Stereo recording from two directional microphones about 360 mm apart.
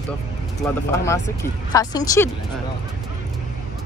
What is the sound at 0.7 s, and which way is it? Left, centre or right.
Speech, centre.